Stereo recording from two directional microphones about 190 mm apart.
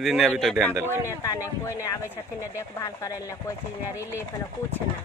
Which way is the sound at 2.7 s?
15° left (ahead or behind).